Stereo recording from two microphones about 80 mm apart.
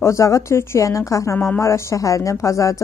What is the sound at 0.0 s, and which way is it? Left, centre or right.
A woman's voice, left.